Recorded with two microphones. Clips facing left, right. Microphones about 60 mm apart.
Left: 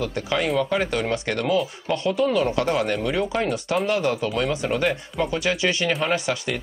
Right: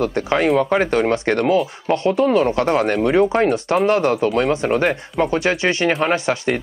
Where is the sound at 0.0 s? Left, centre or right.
Right.